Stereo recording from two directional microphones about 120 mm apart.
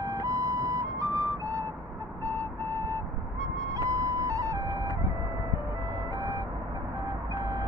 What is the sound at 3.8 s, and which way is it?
Music, 30° right (ahead or behind).